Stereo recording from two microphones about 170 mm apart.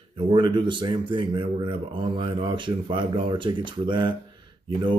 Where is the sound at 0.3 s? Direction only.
30° right (ahead or behind).